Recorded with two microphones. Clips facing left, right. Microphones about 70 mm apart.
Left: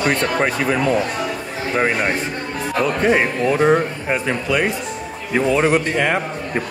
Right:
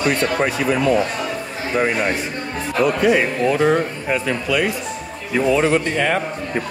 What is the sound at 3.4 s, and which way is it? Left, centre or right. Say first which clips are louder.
Speech: left 2 dB; centre.